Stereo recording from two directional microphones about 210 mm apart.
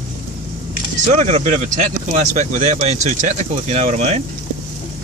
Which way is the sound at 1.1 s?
30° right (ahead or behind).